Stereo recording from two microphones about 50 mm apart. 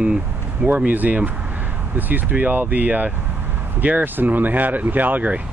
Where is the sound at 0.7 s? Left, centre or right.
Right.